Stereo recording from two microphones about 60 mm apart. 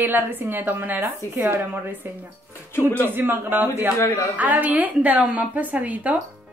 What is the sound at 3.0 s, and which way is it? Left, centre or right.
A woman's voice, right.